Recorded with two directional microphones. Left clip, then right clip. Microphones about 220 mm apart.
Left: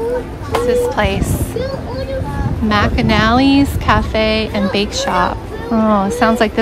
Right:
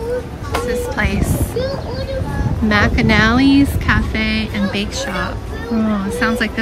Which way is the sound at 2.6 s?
10° left (ahead or behind).